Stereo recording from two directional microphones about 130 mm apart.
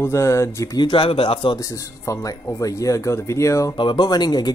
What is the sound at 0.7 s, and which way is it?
Speech, 40° left (ahead or behind).